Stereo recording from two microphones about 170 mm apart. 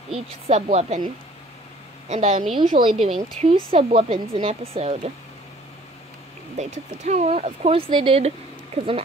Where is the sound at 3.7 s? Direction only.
35° right (ahead or behind).